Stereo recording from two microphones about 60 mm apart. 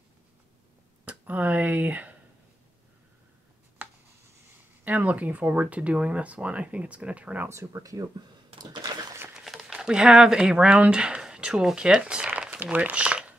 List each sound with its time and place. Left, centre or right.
1.0 s speech: right
4.8 s speech: right
7.4 s speech: right
9.3 s speech: centre
12.3 s crumpling: right
12.7 s speech: right